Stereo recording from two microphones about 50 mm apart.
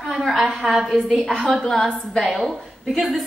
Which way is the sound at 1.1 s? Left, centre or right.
Centre.